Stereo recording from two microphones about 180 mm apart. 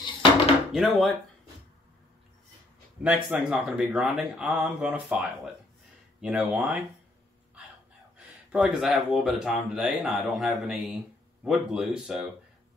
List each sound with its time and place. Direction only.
0.0 s dishes: 30° left (ahead or behind)
0.7 s speech: centre (ahead or behind)
3.0 s speech: 5° right (ahead or behind)
8.2 s speech: 5° right (ahead or behind)